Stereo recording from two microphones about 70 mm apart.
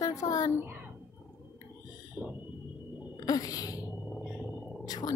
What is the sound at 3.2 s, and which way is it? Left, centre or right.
Sneeze, left.